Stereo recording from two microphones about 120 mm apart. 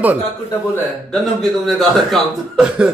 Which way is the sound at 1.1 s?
Centre (ahead or behind).